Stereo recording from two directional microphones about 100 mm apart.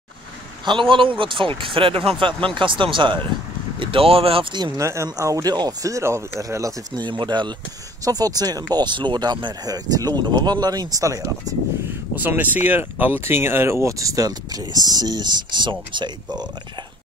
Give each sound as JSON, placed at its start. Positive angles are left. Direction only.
{"t": 0.7, "sound": "speech", "side_deg": -55}
{"t": 4.7, "sound": "speech", "side_deg": -30}
{"t": 7.0, "sound": "speech", "side_deg": -50}
{"t": 12.2, "sound": "speech", "side_deg": -20}